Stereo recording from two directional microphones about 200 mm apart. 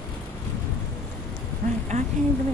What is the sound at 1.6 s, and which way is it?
Speech, 45° right (ahead or behind).